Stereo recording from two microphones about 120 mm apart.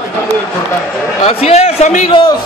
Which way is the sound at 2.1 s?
40° left (ahead or behind).